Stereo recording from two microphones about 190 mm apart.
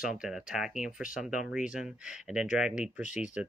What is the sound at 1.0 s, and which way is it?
Speech, 45° left (ahead or behind).